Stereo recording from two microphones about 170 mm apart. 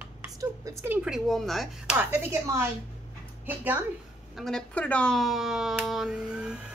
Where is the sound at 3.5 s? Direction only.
10° right (ahead or behind).